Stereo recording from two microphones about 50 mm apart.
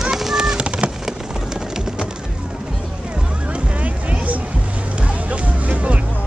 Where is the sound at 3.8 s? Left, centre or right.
Right.